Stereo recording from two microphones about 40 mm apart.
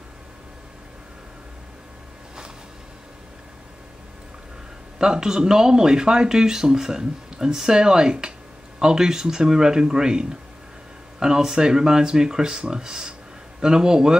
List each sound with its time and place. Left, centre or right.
4.9 s speech: centre